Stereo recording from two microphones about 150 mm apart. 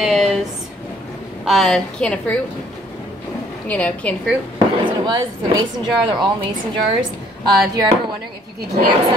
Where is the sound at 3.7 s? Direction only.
10° left (ahead or behind).